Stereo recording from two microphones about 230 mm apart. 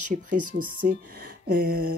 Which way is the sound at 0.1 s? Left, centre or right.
Right.